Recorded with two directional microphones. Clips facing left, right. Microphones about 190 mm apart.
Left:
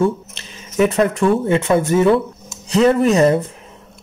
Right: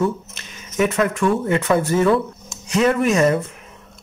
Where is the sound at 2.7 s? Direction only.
30° left (ahead or behind).